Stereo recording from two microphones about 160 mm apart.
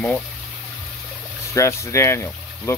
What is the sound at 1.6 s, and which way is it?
Speech, 15° left (ahead or behind).